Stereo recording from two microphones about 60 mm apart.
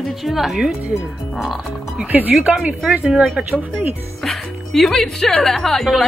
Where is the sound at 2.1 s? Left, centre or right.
Right.